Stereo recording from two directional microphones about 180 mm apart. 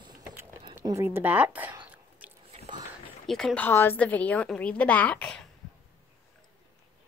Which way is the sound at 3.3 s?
Centre (ahead or behind).